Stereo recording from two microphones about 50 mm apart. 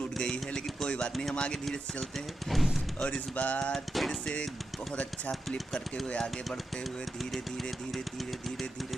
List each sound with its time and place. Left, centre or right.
0.2 s speech: centre
0.8 s a sound: centre
1.3 s speech: centre
2.5 s speech: centre
3.0 s speech: left
3.7 s speech: centre
6.0 s speech: left